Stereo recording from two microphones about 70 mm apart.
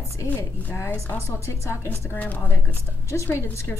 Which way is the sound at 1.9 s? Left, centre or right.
Left.